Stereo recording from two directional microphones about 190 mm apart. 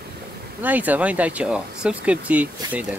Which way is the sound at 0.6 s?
10° right (ahead or behind).